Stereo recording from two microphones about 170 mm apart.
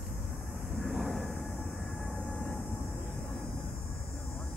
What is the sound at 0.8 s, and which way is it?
Vehicle, centre (ahead or behind).